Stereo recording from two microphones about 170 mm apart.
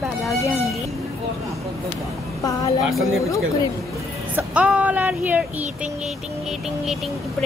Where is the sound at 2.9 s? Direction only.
Centre (ahead or behind).